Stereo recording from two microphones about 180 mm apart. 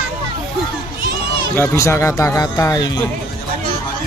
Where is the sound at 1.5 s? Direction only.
15° left (ahead or behind).